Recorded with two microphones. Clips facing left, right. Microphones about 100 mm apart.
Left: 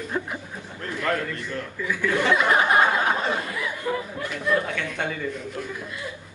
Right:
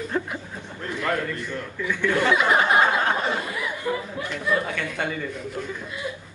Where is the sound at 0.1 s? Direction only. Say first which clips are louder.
Right 2 dB; 10° left (ahead or behind).